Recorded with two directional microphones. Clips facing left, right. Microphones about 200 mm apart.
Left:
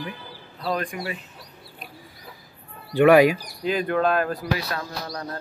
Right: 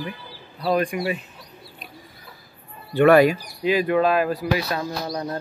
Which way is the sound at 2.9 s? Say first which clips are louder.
Even; 10° left (ahead or behind).